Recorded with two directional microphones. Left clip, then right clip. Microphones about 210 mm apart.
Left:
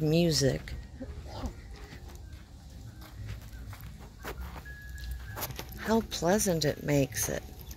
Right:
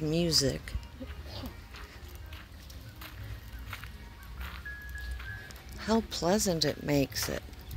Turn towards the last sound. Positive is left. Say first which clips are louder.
# left 1 dB
turn(degrees=-20)  # may be behind; listen again after turning